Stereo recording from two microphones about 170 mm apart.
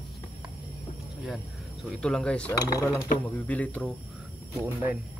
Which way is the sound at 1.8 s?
5° left (ahead or behind).